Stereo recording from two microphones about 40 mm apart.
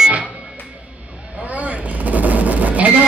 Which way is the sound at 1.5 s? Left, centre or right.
Right.